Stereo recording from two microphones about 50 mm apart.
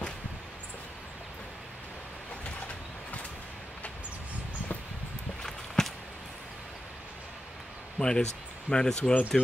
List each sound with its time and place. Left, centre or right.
5.4 s walk: centre
8.0 s speech: centre